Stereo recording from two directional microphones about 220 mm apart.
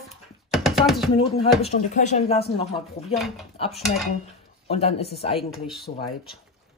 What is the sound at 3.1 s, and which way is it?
Speech, centre (ahead or behind).